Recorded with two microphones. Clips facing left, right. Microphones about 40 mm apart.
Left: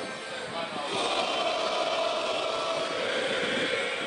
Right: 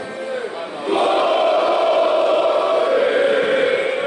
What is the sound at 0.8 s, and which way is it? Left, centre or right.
Crowd, right.